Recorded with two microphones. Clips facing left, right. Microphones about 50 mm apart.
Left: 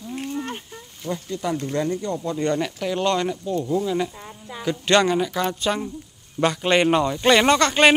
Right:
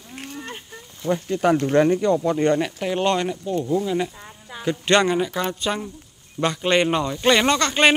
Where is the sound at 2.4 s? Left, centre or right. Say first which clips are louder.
Right 3 dB; right.